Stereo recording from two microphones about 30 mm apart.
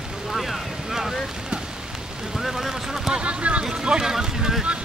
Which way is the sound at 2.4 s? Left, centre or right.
Centre.